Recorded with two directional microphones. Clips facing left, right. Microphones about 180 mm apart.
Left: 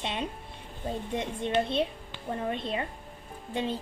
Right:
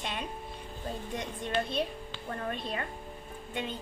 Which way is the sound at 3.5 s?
35° left (ahead or behind).